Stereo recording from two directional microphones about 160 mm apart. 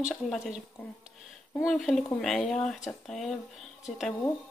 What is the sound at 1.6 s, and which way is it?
Speech, centre (ahead or behind).